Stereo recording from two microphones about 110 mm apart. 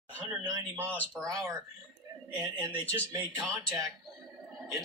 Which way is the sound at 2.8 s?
15° left (ahead or behind).